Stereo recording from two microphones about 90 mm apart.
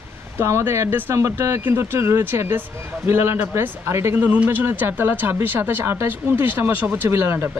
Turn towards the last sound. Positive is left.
turn(degrees=-30)  # may be behind; listen again after turning